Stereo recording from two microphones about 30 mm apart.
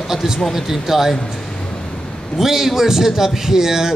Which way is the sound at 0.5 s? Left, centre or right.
Centre.